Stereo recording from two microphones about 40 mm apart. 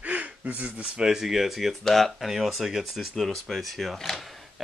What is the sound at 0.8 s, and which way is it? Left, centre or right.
Speech, centre.